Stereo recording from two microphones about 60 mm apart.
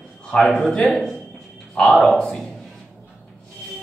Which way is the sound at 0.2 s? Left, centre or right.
Centre.